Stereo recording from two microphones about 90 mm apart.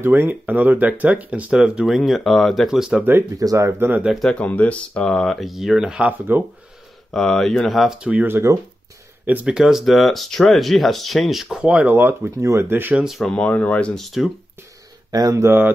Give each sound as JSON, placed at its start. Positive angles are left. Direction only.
{"t": 0.0, "sound": "speech", "side_deg": -20}
{"t": 3.0, "sound": "speech", "side_deg": -25}
{"t": 3.3, "sound": "speech", "side_deg": -40}
{"t": 4.0, "sound": "speech", "side_deg": 0}
{"t": 4.5, "sound": "speech", "side_deg": 15}
{"t": 6.0, "sound": "speech", "side_deg": -20}
{"t": 7.1, "sound": "speech", "side_deg": 5}
{"t": 8.1, "sound": "speech", "side_deg": -20}
{"t": 12.9, "sound": "speech", "side_deg": -5}
{"t": 13.2, "sound": "speech", "side_deg": 10}
{"t": 15.0, "sound": "speech", "side_deg": -45}
{"t": 15.3, "sound": "speech", "side_deg": -25}